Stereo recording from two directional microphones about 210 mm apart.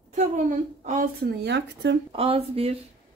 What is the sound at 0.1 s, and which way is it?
A woman's voice, 35° right (ahead or behind).